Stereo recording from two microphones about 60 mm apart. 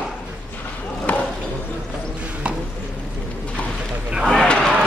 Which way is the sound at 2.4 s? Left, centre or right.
Right.